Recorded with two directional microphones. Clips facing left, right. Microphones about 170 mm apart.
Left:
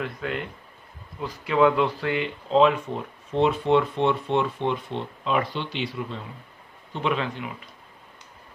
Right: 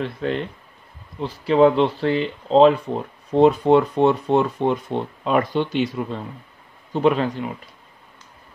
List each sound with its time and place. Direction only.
0.0 s speech: 30° right (ahead or behind)